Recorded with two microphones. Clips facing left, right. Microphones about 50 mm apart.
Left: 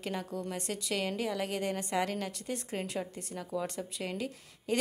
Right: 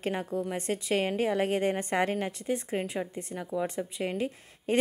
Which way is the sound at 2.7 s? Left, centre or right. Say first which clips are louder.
Right 4 dB; centre.